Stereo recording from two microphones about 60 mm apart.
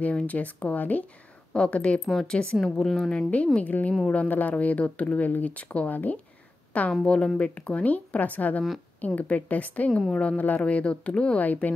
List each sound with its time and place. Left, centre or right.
0.0 s speech: left
1.5 s a woman's voice: centre
3.1 s speech: left